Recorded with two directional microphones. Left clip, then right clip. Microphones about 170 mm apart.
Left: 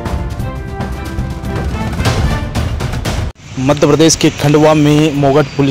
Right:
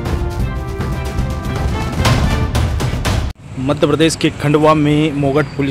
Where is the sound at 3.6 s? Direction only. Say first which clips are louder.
Left 4 dB; 20° left (ahead or behind).